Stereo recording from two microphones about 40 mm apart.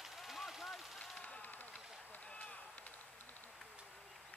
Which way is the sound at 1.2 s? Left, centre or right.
Left.